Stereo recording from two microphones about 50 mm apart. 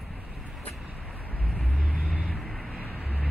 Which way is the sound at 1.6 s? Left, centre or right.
Left.